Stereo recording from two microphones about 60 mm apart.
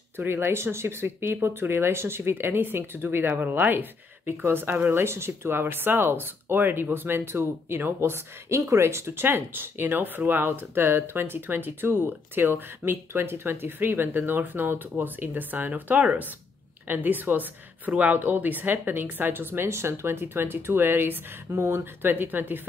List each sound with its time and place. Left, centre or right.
0.2 s speech: right